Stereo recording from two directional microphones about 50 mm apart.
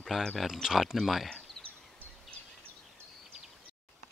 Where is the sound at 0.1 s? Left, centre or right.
Centre.